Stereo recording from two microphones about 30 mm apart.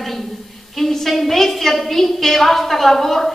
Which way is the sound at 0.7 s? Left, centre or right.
Centre.